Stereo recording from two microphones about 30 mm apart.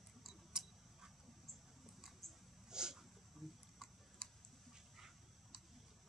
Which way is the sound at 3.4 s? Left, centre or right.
Centre.